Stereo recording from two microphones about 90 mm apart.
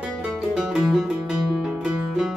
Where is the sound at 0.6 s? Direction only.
5° right (ahead or behind).